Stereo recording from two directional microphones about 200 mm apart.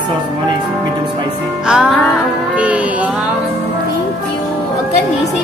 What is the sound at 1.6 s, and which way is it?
Music, 5° right (ahead or behind).